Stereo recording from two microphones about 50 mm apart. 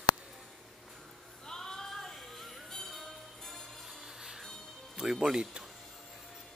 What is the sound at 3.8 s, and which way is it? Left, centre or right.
Music, centre.